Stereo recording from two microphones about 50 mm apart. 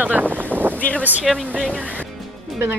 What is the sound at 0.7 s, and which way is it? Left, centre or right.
Speech, left.